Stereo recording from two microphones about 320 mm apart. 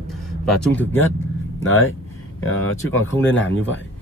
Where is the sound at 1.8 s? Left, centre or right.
Left.